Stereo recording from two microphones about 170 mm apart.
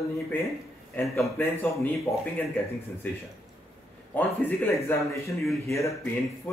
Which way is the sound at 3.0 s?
10° left (ahead or behind).